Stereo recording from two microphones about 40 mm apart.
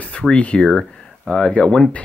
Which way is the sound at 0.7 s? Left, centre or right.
Centre.